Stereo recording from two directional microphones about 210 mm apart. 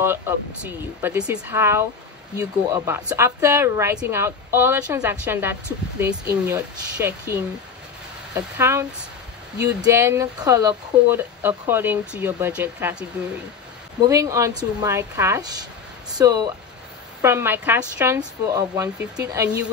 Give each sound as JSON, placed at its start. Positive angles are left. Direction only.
{"t": 0.7, "sound": "speech", "side_deg": -10}
{"t": 8.4, "sound": "speech", "side_deg": -10}
{"t": 9.8, "sound": "speech", "side_deg": -15}
{"t": 14.0, "sound": "speech", "side_deg": -15}